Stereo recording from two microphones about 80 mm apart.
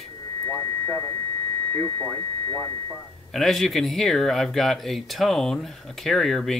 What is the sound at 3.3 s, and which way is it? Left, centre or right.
Speech, centre.